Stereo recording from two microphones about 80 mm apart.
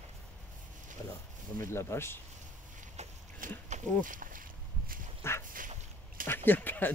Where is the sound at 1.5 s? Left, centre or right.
Left.